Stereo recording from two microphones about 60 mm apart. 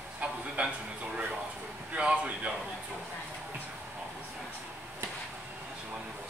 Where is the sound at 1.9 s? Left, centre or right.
Centre.